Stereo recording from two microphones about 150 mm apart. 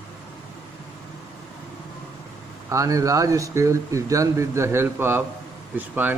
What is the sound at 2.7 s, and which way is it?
Speech, 20° right (ahead or behind).